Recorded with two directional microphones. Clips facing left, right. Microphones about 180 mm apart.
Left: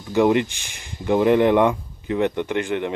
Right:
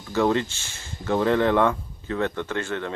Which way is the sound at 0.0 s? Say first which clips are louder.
Left 4 dB; 15° left (ahead or behind).